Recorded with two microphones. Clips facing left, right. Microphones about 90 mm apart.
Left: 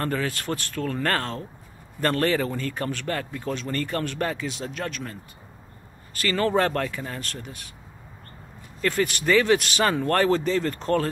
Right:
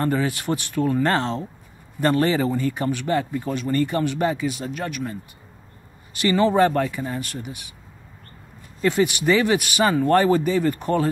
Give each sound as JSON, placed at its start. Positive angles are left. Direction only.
{"t": 0.0, "sound": "a man's voice", "side_deg": -10}
{"t": 8.8, "sound": "a man's voice", "side_deg": -15}